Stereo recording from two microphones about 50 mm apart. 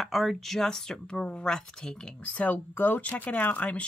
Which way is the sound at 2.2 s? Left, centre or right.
Left.